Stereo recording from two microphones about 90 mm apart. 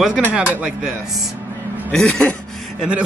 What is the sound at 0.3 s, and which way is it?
Speech, 10° right (ahead or behind).